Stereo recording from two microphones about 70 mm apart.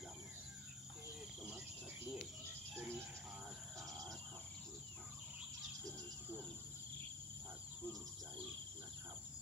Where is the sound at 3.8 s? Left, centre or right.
Right.